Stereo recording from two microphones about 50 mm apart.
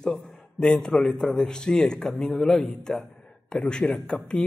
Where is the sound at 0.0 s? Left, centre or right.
Centre.